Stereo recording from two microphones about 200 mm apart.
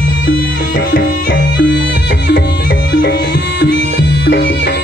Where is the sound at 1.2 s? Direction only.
55° left (ahead or behind).